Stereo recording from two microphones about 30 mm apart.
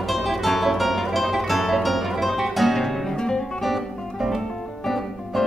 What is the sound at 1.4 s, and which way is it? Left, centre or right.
Music, centre.